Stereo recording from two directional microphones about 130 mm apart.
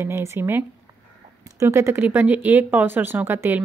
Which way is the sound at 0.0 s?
20° right (ahead or behind).